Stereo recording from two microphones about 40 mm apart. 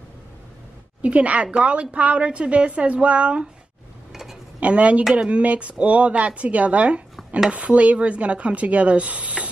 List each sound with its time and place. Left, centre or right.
1.0 s a woman's voice: right
4.1 s a sound: centre
4.6 s a woman's voice: right